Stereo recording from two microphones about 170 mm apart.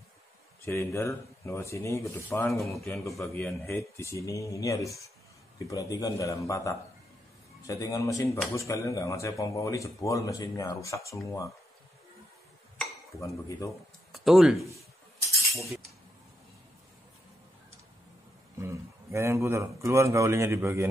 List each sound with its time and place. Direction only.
0.7 s speech: 15° left (ahead or behind)
2.8 s a man's voice: centre (ahead or behind)
3.2 s speech: 10° left (ahead or behind)
13.2 s speech: 20° left (ahead or behind)
14.1 s speech: centre (ahead or behind)
18.6 s a man's voice: 15° right (ahead or behind)